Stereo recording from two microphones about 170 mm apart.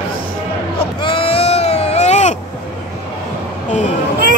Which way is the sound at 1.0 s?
30° left (ahead or behind).